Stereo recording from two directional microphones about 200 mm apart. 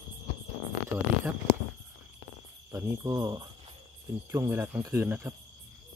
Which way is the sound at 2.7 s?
10° right (ahead or behind).